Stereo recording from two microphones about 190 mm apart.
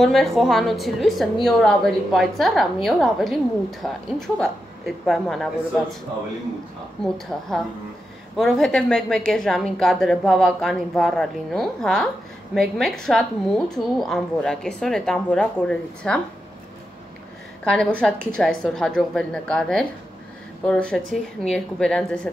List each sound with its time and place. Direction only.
0.0 s a woman's voice: centre (ahead or behind)
7.0 s a woman's voice: 5° left (ahead or behind)
17.6 s a woman's voice: 5° left (ahead or behind)